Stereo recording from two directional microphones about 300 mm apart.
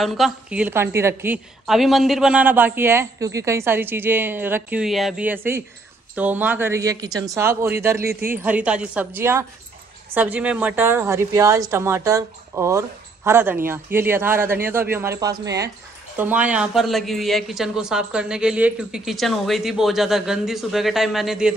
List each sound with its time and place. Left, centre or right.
0.0 s a woman's voice: centre
8.0 s speech: right
8.4 s a woman's voice: centre